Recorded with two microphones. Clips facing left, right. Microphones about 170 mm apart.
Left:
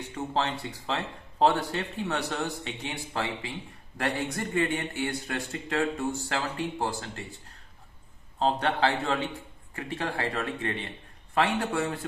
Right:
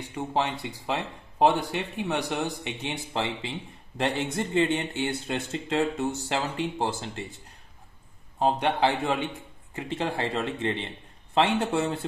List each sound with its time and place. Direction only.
0.1 s speech: 15° right (ahead or behind)
8.4 s speech: 15° right (ahead or behind)